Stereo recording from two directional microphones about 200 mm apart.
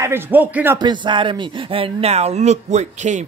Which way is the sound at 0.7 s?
25° right (ahead or behind).